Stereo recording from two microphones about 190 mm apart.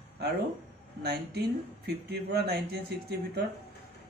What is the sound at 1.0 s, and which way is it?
A man's voice, 55° right (ahead or behind).